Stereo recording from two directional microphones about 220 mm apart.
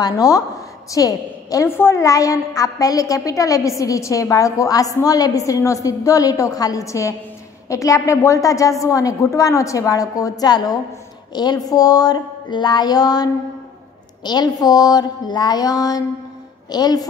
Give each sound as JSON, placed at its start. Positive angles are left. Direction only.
{"t": 0.0, "sound": "a woman's voice", "side_deg": 15}